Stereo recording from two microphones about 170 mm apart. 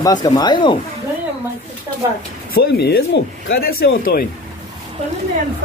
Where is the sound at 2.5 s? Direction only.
70° left (ahead or behind).